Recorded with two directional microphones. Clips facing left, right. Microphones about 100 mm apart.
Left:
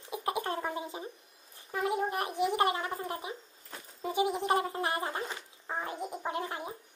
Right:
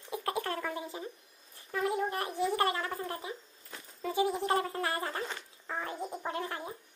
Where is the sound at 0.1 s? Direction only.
20° left (ahead or behind).